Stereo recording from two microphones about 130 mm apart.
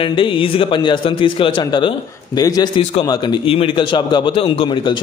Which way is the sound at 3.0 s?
35° left (ahead or behind).